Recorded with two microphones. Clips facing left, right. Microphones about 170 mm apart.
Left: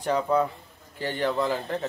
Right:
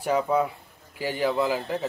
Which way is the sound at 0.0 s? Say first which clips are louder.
Even; 10° right (ahead or behind).